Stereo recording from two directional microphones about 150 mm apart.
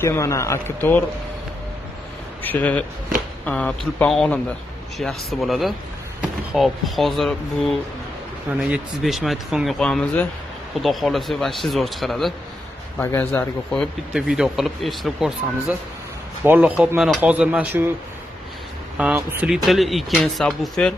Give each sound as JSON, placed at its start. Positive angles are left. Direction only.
{"t": 0.0, "sound": "speech", "side_deg": 20}
{"t": 2.4, "sound": "speech", "side_deg": 10}
{"t": 8.7, "sound": "speech", "side_deg": 0}
{"t": 13.0, "sound": "speech", "side_deg": 15}
{"t": 14.1, "sound": "speech", "side_deg": -5}
{"t": 18.9, "sound": "speech", "side_deg": -10}